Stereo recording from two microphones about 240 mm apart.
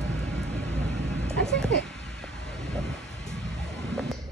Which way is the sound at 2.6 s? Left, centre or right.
Centre.